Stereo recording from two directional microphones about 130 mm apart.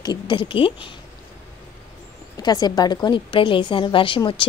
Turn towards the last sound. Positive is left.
turn(degrees=40)  # may be behind; listen again after turning